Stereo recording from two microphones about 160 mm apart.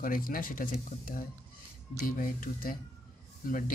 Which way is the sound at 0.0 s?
60° left (ahead or behind).